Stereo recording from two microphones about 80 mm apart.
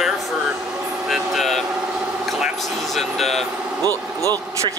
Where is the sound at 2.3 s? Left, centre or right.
Centre.